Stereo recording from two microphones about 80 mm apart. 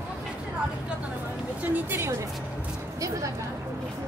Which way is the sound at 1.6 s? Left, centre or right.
Right.